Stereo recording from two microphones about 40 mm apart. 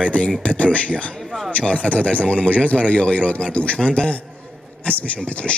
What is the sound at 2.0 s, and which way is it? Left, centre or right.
A man's voice, left.